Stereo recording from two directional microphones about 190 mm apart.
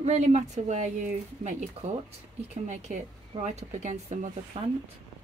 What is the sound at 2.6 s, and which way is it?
Speech, 40° right (ahead or behind).